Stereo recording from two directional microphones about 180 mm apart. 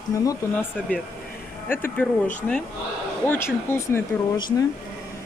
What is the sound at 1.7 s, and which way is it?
Speech, 10° left (ahead or behind).